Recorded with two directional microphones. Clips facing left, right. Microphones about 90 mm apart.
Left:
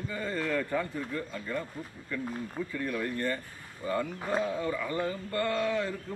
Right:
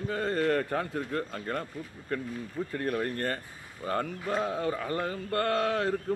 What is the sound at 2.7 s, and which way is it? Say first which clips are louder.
Speech: right 3 dB; 50° right (ahead or behind).